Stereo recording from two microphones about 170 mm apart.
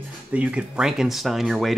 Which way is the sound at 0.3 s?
10° right (ahead or behind).